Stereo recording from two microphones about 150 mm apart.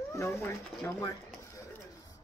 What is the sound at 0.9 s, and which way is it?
Speech, 20° left (ahead or behind).